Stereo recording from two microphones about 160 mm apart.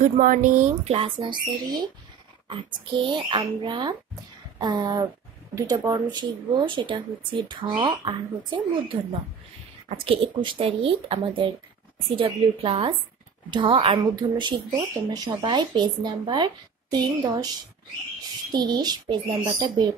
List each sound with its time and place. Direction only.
0.0 s speech: 55° right (ahead or behind); by 8.9 s 30° right (ahead or behind)
10.0 s speech: 35° right (ahead or behind)